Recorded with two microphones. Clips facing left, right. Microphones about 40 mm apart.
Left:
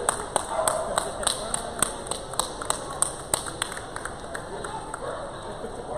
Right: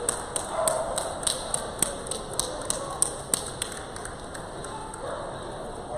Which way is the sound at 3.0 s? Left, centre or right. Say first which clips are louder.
Left 2 dB; left.